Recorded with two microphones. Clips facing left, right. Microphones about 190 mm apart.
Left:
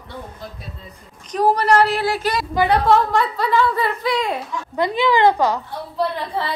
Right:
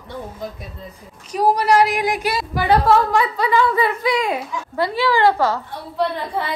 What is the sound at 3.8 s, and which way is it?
Speech, 20° right (ahead or behind).